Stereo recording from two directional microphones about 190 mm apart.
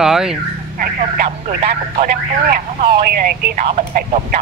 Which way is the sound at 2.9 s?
55° right (ahead or behind).